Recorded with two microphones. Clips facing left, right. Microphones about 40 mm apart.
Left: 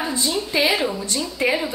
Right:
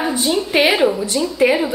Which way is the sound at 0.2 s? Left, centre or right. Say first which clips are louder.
Right 5 dB; right.